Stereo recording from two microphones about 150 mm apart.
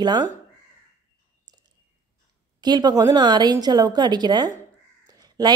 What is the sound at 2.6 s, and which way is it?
A woman's voice, 25° right (ahead or behind).